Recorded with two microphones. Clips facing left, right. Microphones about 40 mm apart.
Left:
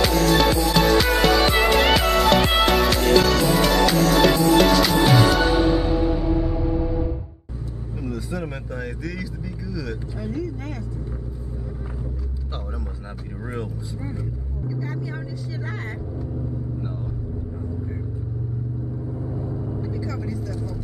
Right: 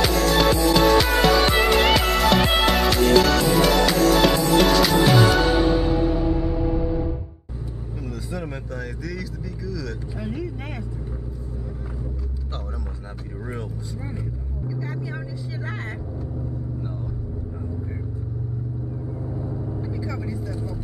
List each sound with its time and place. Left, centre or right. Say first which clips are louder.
0.0 s music: left 1 dB; centre
8.0 s vehicle: left 3 dB; centre
10.2 s vehicle: left 2 dB; right
14.7 s vehicle: left 1 dB; centre
19.2 s vehicle: even; centre
19.9 s vehicle: left 1 dB; centre